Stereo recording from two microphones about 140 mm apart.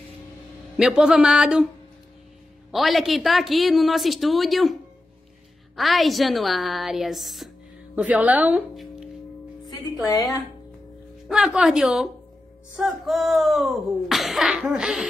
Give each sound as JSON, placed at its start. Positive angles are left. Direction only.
{"t": 0.7, "sound": "a woman's voice", "side_deg": -5}
{"t": 2.7, "sound": "a woman's voice", "side_deg": 0}
{"t": 5.8, "sound": "a woman's voice", "side_deg": 0}
{"t": 10.0, "sound": "speech", "side_deg": 25}
{"t": 11.2, "sound": "a woman's voice", "side_deg": -5}